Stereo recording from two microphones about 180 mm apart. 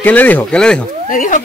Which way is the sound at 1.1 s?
45° left (ahead or behind).